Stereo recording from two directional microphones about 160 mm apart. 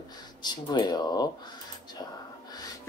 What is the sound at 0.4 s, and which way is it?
Speech, 25° left (ahead or behind).